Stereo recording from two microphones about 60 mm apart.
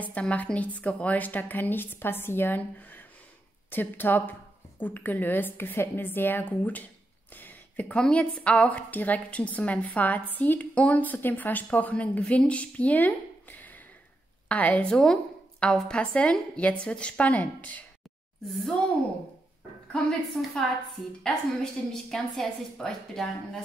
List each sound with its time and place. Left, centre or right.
0.0 s a woman's voice: left
7.3 s a sound: left
7.9 s a woman's voice: centre
14.9 s a woman's voice: centre
18.5 s a woman's voice: centre
19.9 s a woman's voice: centre